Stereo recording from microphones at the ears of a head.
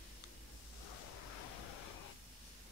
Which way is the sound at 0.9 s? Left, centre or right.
Left.